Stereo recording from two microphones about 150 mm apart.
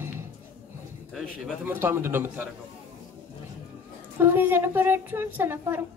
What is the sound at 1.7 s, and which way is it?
Speech, 15° right (ahead or behind).